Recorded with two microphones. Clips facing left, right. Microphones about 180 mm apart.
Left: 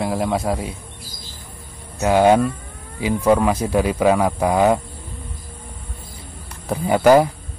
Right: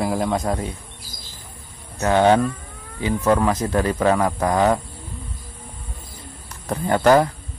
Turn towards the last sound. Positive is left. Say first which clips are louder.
# left 2 dB
turn(degrees=10)  # may be behind; listen again after turning